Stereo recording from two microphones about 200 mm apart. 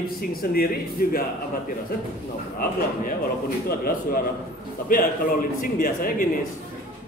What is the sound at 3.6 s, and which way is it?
Speech, 45° left (ahead or behind).